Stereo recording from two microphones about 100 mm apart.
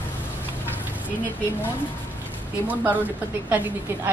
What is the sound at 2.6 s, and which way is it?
Speech, 20° right (ahead or behind).